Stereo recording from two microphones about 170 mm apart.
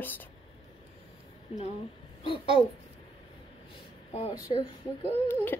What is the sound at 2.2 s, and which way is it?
Speech, 30° left (ahead or behind).